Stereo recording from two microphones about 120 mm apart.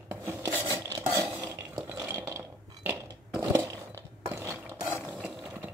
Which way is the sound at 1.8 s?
20° right (ahead or behind).